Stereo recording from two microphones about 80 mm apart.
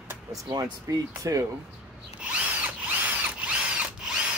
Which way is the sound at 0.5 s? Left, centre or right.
Right.